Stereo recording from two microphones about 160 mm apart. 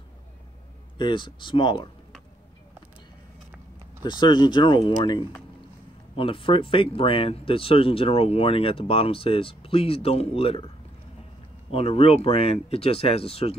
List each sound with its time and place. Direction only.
0.9 s speech: 30° left (ahead or behind)
4.0 s speech: 30° left (ahead or behind)
11.7 s speech: 40° left (ahead or behind)